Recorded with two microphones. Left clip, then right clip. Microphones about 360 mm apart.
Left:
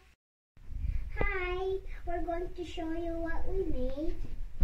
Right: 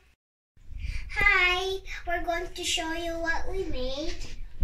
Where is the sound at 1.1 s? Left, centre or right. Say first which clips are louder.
Right 13 dB; right.